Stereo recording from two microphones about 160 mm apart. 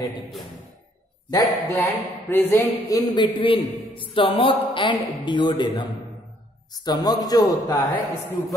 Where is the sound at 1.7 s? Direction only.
10° left (ahead or behind).